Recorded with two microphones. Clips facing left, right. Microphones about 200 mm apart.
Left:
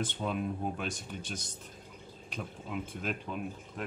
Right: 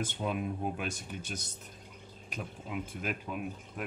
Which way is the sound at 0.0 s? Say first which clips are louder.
Even; 10° right (ahead or behind).